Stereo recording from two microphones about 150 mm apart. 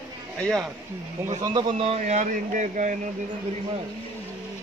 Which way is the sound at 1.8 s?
45° right (ahead or behind).